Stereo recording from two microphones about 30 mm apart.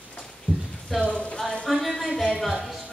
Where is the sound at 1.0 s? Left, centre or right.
Left.